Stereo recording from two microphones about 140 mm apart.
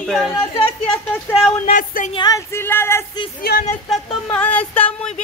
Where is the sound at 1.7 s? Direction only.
75° left (ahead or behind).